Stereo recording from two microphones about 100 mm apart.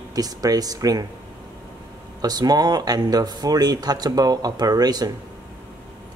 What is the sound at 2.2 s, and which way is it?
A man's voice, 40° right (ahead or behind).